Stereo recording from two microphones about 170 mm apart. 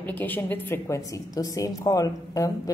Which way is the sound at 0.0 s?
10° left (ahead or behind).